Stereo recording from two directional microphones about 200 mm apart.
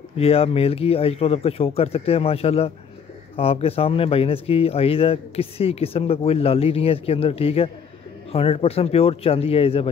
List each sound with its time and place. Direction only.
0.2 s speech: 30° left (ahead or behind)